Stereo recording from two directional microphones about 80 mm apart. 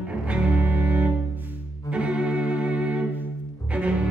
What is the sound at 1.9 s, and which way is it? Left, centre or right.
Music, centre.